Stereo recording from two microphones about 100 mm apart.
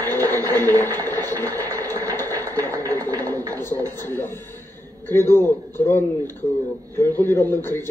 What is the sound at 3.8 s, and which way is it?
A woman's voice, 20° left (ahead or behind).